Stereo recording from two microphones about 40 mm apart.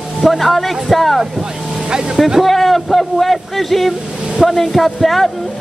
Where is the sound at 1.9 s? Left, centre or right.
Right.